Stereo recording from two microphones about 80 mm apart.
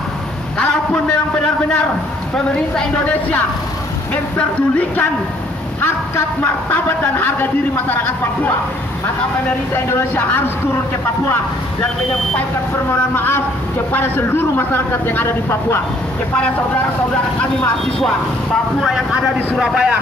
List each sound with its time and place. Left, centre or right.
0.6 s a sound: centre
3.1 s speech: centre
4.1 s a sound: centre
5.8 s speech: left
9.8 s speech: left
12.9 s speech: left
18.8 s speech: centre